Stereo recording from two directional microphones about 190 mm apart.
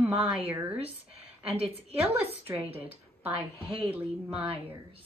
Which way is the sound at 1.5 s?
30° right (ahead or behind).